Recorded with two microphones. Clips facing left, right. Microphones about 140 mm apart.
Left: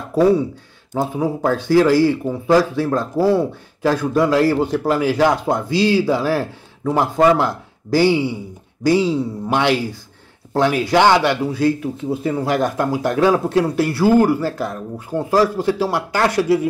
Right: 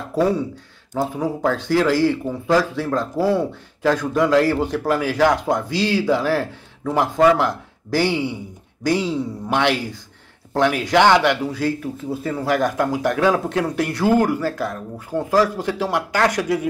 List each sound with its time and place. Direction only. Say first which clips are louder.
0.9 s speech: left 2 dB; 15° left (ahead or behind)